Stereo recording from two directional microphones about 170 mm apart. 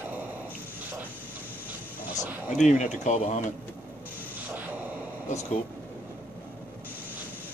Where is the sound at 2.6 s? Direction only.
45° left (ahead or behind).